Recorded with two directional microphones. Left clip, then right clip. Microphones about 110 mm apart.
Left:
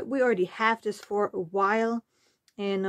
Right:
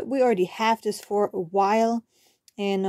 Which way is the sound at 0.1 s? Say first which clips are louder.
Right 3 dB; 25° right (ahead or behind).